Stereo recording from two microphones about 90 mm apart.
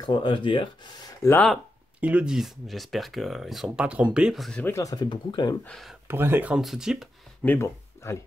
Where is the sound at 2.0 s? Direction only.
15° right (ahead or behind).